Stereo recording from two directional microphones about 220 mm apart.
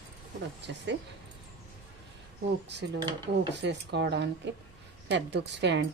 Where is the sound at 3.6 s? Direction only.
50° right (ahead or behind).